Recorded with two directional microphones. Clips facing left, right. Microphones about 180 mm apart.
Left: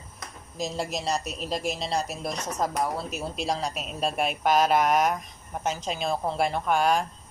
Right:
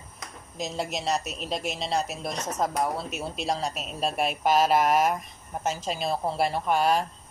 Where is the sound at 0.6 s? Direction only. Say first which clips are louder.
Left 1 dB; centre (ahead or behind).